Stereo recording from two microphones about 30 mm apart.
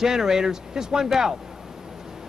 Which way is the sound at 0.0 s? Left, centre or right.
Centre.